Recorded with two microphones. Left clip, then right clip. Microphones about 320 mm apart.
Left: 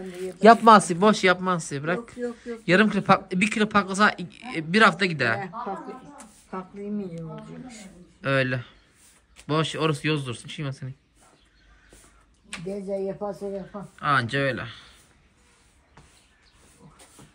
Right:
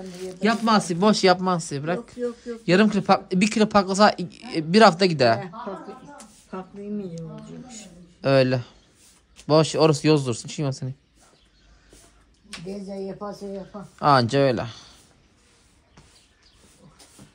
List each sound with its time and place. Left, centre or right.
0.4 s speech: centre
8.2 s speech: centre
13.3 s speech: left
14.0 s speech: centre